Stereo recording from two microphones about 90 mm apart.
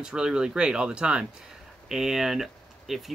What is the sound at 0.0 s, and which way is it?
Speech, 10° right (ahead or behind).